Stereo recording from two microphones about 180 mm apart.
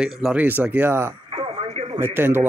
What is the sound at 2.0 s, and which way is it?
Speech, 10° right (ahead or behind).